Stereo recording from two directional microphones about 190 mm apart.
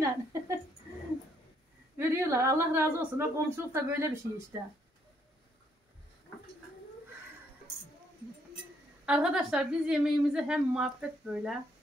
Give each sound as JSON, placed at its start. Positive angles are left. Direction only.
{"t": 0.0, "sound": "a sound", "side_deg": -15}
{"t": 2.0, "sound": "a woman's voice", "side_deg": -15}
{"t": 9.0, "sound": "a woman's voice", "side_deg": -5}